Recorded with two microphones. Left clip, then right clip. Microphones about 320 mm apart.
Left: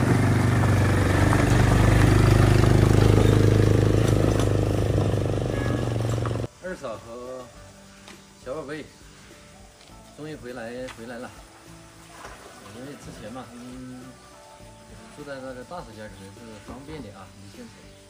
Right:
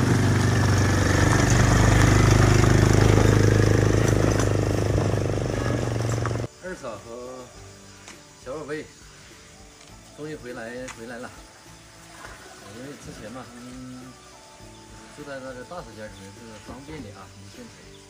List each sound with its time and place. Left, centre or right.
0.1 s vehicle: centre
8.5 s music: centre
10.2 s speech: centre
15.2 s speech: centre